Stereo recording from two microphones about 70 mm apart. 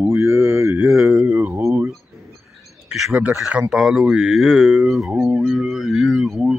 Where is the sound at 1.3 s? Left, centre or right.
Right.